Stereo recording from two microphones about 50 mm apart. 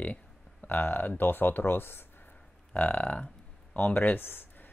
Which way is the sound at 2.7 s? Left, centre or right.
Left.